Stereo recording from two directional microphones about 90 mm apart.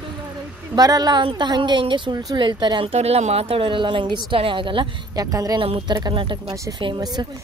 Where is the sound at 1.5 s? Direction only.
60° right (ahead or behind).